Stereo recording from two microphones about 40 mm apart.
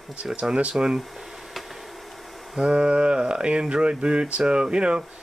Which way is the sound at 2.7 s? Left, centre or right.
Right.